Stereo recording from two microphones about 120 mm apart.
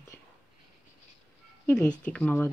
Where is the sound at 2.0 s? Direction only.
10° left (ahead or behind).